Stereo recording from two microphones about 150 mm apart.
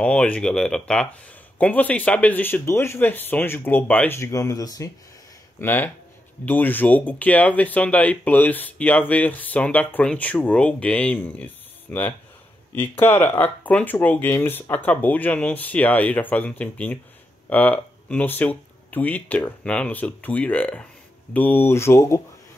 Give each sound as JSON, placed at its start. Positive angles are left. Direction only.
{"t": 0.0, "sound": "speech", "side_deg": 5}
{"t": 5.6, "sound": "speech", "side_deg": 15}